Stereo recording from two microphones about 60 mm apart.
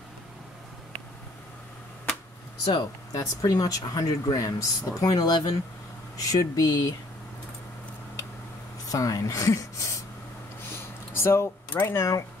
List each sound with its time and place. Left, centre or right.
3.1 s speech: left
8.8 s a woman's voice: left
11.1 s speech: left